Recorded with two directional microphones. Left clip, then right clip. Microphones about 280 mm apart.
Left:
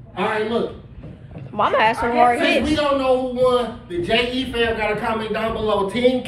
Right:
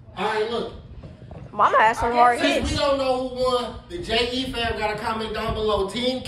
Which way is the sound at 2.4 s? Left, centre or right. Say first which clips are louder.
Left 3 dB; right.